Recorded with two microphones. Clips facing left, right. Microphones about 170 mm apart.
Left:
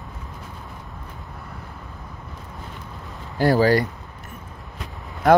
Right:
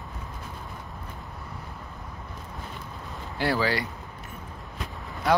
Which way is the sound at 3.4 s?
45° left (ahead or behind).